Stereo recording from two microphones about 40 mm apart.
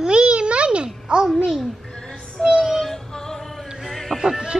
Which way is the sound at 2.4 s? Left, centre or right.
Centre.